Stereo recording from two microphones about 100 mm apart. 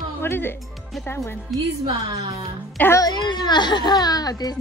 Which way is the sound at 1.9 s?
45° right (ahead or behind).